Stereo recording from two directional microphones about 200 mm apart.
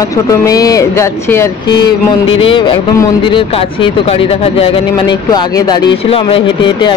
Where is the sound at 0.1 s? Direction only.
15° left (ahead or behind).